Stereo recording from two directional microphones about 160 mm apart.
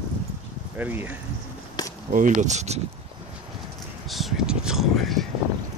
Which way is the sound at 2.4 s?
45° right (ahead or behind).